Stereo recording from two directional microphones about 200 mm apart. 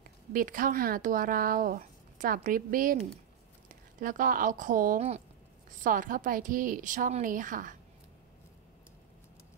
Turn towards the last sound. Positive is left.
turn(degrees=-40)  # may be behind; listen again after turning